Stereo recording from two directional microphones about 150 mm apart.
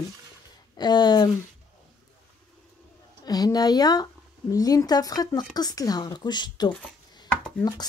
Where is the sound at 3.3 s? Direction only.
25° left (ahead or behind).